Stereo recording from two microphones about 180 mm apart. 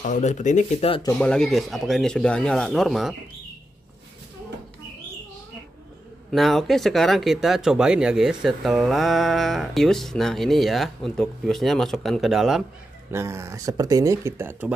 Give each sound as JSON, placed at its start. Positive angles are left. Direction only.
{"t": 0.0, "sound": "speech", "side_deg": 40}
{"t": 1.2, "sound": "speech", "side_deg": 5}
{"t": 6.3, "sound": "speech", "side_deg": 0}
{"t": 13.1, "sound": "speech", "side_deg": -15}